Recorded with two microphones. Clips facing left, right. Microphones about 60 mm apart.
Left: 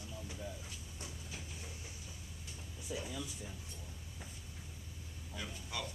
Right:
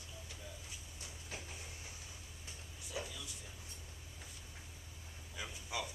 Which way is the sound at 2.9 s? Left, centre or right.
Centre.